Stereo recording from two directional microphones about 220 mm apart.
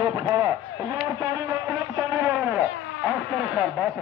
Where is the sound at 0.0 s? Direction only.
15° right (ahead or behind).